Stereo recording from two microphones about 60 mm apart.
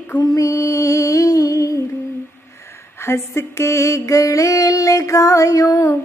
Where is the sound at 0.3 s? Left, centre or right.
Left.